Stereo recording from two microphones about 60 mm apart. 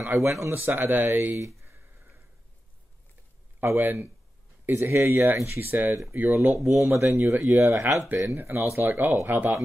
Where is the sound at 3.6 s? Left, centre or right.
Right.